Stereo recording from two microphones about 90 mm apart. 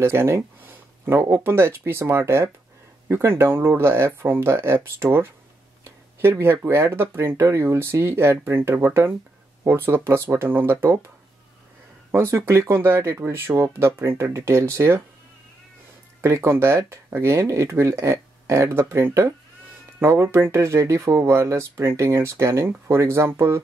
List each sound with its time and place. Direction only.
0.0 s speech: 30° right (ahead or behind)
12.1 s speech: 25° right (ahead or behind)
16.2 s speech: 30° right (ahead or behind)